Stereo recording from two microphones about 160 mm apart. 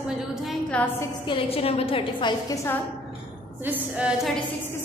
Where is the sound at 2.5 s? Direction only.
15° left (ahead or behind).